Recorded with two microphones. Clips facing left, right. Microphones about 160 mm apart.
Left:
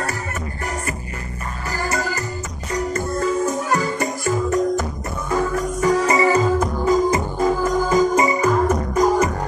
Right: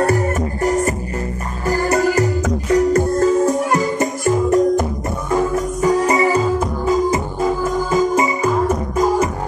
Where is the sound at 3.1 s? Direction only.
40° right (ahead or behind).